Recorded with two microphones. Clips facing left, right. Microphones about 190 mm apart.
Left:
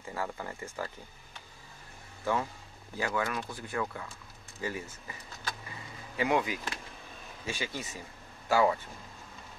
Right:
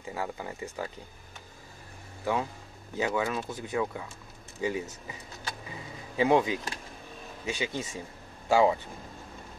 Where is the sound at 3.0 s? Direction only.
20° right (ahead or behind).